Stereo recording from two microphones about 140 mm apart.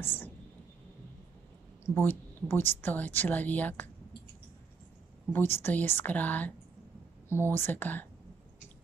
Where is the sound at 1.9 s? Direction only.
15° left (ahead or behind).